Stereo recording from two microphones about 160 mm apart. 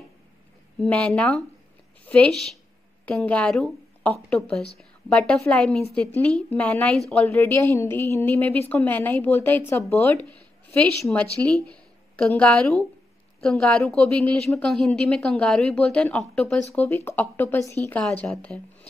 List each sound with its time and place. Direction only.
0.7 s a woman's voice: 5° left (ahead or behind)
18.0 s a woman's voice: 5° left (ahead or behind)